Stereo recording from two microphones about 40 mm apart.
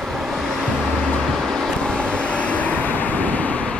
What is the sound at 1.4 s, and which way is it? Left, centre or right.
Vehicle, centre.